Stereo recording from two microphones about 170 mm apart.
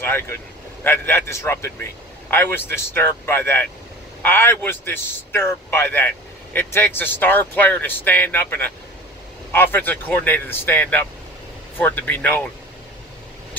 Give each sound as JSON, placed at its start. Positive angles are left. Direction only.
{"t": 0.0, "sound": "a man's voice", "side_deg": 10}